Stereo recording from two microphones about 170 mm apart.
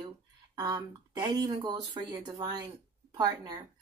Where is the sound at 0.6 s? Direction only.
25° right (ahead or behind).